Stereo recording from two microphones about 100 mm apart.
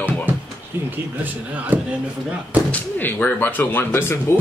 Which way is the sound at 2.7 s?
15° left (ahead or behind).